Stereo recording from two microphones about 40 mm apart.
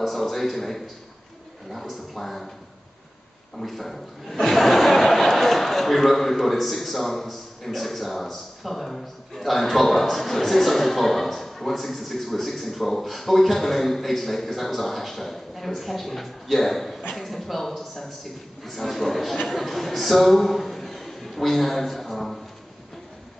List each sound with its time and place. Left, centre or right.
0.0 s speech: centre
3.5 s a man's voice: centre